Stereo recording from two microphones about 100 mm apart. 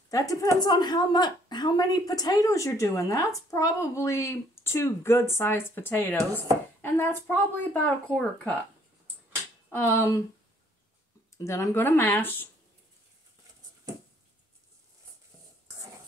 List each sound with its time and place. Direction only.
0.1 s a woman's voice: 35° left (ahead or behind); by 8.5 s 10° left (ahead or behind)
9.9 s a woman's voice: 30° left (ahead or behind)
11.3 s a woman's voice: 30° left (ahead or behind)